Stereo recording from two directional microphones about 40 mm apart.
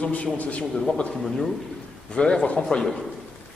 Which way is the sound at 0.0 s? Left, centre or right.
Left.